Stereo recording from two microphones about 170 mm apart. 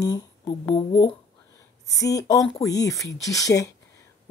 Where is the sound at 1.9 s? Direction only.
20° left (ahead or behind).